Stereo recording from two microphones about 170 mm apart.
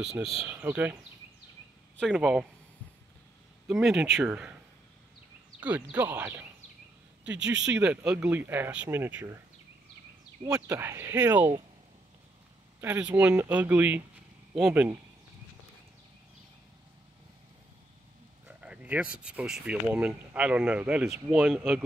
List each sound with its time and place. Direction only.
0.0 s speech: centre (ahead or behind)
2.0 s speech: centre (ahead or behind)
3.6 s speech: 5° right (ahead or behind)
5.6 s speech: 10° right (ahead or behind)
7.3 s speech: 90° right
7.6 s speech: 10° right (ahead or behind)
10.4 s speech: 20° right (ahead or behind)
12.8 s speech: 10° right (ahead or behind)
18.6 s speech: 5° right (ahead or behind)